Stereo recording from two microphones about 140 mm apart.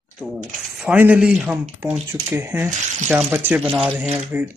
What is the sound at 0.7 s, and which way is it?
A man's voice, 10° right (ahead or behind).